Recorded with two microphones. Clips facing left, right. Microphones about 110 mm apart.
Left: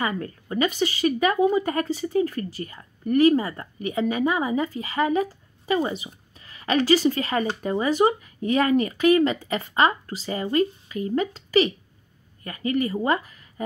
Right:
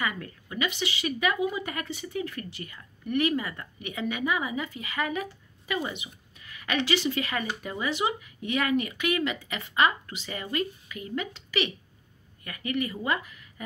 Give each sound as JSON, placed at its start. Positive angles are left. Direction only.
{"t": 0.0, "sound": "speech", "side_deg": 35}